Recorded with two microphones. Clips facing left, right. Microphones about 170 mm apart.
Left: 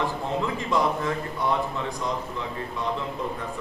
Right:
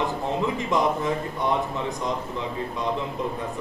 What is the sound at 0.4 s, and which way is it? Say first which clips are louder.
Speech: right 1 dB; 20° right (ahead or behind).